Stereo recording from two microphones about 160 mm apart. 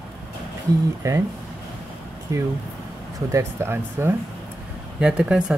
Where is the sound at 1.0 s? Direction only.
20° right (ahead or behind).